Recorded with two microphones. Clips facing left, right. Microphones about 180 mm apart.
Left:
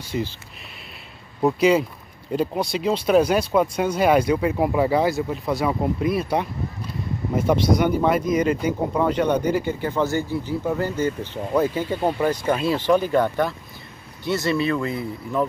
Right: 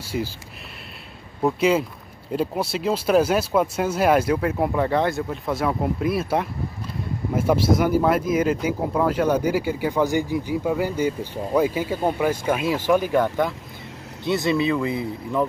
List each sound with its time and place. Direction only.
0.0 s speech: 10° right (ahead or behind)
1.4 s speech: centre (ahead or behind); by 15.4 s 20° right (ahead or behind)